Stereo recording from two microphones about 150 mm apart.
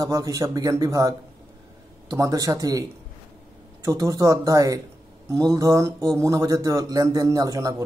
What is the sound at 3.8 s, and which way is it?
Speech, 20° right (ahead or behind).